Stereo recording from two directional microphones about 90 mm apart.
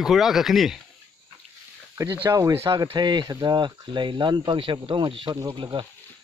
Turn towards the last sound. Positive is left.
turn(degrees=-55)  # may be behind; listen again after turning